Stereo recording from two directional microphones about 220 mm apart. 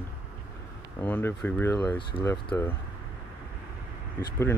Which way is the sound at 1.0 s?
10° left (ahead or behind).